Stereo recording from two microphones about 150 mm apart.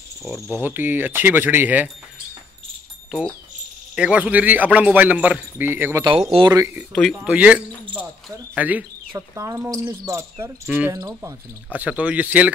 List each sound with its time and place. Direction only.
0.5 s a man's voice: 10° right (ahead or behind)
3.9 s a man's voice: 5° right (ahead or behind)
6.3 s speech: 25° right (ahead or behind)
6.9 s speech: 5° left (ahead or behind)
7.2 s a man's voice: 10° right (ahead or behind)
11.7 s a man's voice: 10° right (ahead or behind)